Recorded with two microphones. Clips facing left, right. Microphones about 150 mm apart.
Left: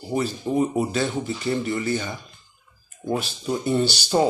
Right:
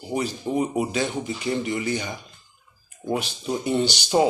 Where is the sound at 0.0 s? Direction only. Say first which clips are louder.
Left 1 dB; 15° right (ahead or behind).